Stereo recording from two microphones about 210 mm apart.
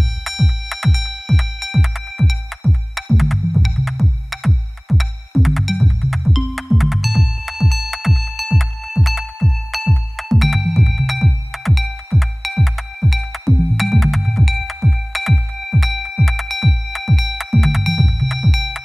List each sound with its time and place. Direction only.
0.2 s music: centre (ahead or behind)